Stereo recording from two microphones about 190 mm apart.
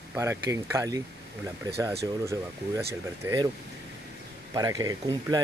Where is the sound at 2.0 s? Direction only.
15° right (ahead or behind).